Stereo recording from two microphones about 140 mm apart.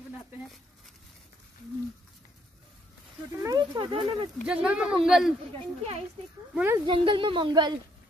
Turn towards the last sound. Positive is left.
turn(degrees=-30)  # may be behind; listen again after turning